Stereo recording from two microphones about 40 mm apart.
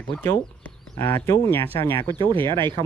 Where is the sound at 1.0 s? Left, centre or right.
Left.